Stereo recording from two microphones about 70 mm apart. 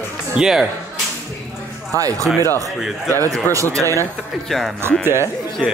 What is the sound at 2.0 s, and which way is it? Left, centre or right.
Speech, right.